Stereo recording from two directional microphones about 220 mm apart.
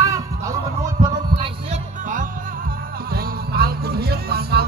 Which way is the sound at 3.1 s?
45° right (ahead or behind).